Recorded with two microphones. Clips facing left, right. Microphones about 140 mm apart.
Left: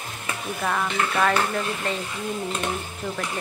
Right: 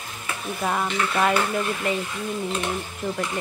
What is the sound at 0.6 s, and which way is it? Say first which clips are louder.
Speech: right 1 dB; 15° right (ahead or behind).